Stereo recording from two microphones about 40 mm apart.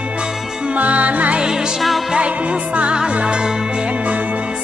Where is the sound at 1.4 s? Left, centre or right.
Centre.